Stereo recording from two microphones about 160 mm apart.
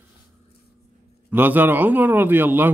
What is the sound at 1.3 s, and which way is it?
A man's voice, 10° right (ahead or behind).